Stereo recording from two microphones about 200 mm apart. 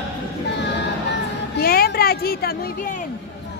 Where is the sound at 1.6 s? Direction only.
50° left (ahead or behind).